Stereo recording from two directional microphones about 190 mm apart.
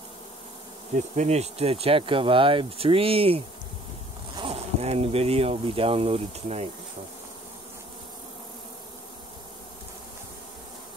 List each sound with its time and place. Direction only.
1.1 s speech: 35° right (ahead or behind)